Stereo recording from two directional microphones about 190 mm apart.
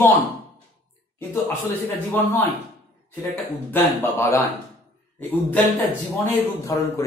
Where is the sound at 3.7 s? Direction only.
15° left (ahead or behind).